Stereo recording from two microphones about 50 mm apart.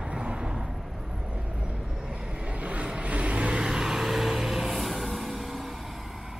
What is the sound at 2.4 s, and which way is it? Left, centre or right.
Vehicle, right.